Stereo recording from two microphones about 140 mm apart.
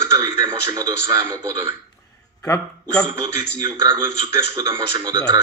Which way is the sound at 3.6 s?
35° right (ahead or behind).